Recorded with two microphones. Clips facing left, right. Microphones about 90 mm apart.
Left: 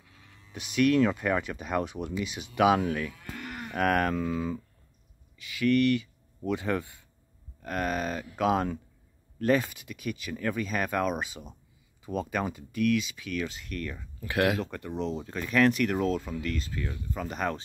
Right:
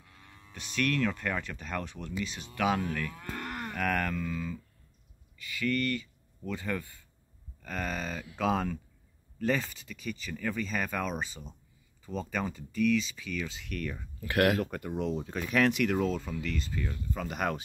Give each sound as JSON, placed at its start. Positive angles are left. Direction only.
{"t": 0.5, "sound": "speech", "side_deg": 15}
{"t": 3.1, "sound": "cattle", "side_deg": -55}
{"t": 4.1, "sound": "speech", "side_deg": 30}
{"t": 5.4, "sound": "speech", "side_deg": 20}
{"t": 7.6, "sound": "speech", "side_deg": 10}
{"t": 14.6, "sound": "speech", "side_deg": -10}